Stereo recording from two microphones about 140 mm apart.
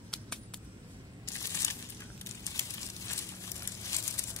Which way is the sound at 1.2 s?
20° left (ahead or behind).